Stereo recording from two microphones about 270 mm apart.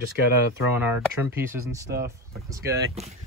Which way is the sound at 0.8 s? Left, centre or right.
Centre.